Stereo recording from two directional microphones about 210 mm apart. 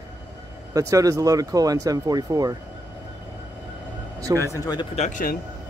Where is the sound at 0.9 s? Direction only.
15° right (ahead or behind).